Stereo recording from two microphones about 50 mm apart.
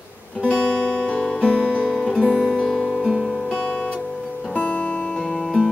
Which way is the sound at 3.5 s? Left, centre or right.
Centre.